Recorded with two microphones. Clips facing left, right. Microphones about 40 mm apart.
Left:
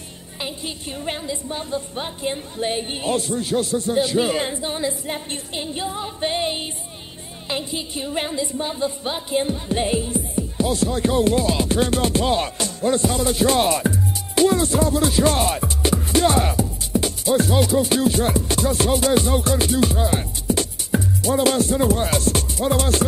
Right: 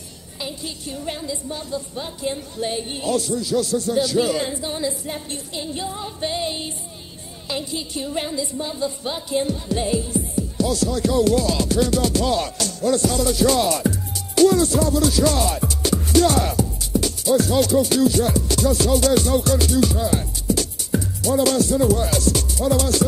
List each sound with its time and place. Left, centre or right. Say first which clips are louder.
0.4 s speech: left 1 dB; left
7.4 s music: left 1 dB; left